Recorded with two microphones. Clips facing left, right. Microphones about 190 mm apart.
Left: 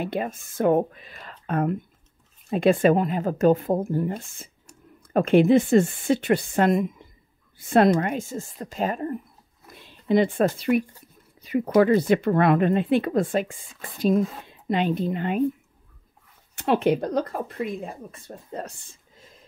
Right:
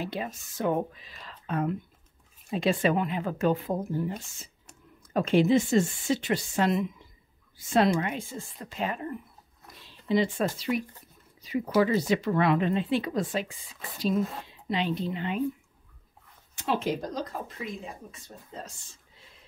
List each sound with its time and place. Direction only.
0.0 s speech: 55° left (ahead or behind)
9.8 s speech: 55° left (ahead or behind)
16.5 s speech: 60° left (ahead or behind); by 19.4 s 45° left (ahead or behind)